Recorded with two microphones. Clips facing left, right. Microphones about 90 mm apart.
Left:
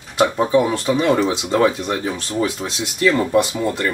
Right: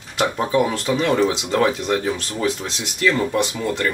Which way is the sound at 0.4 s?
20° left (ahead or behind).